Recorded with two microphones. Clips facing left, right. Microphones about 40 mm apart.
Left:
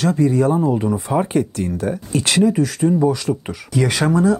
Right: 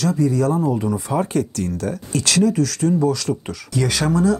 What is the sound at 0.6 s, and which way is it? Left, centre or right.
Speech, centre.